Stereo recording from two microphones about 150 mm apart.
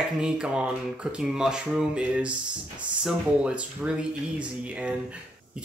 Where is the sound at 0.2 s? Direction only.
5° right (ahead or behind).